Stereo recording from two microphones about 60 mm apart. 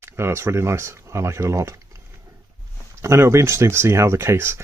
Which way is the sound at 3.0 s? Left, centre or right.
Right.